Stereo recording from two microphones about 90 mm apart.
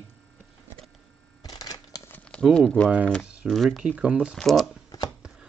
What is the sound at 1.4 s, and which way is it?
Shuffling cards, 45° left (ahead or behind).